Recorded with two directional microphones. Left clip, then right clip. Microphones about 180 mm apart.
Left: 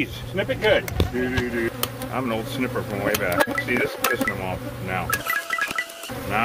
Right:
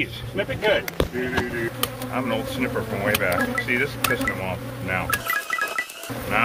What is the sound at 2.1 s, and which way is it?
Speech, 50° left (ahead or behind).